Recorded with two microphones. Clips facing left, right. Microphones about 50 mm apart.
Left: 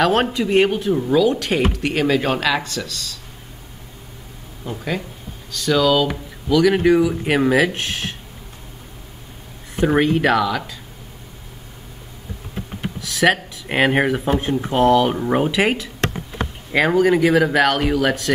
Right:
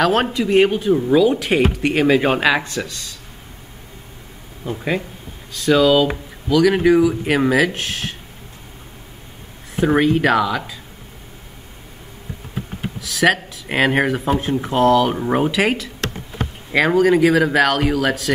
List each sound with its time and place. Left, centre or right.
0.0 s speech: centre; by 3.2 s right
4.6 s speech: centre
9.8 s speech: centre
10.4 s speech: centre
13.0 s speech: centre